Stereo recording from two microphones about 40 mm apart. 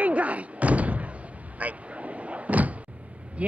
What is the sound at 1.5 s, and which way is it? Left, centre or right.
Door, right.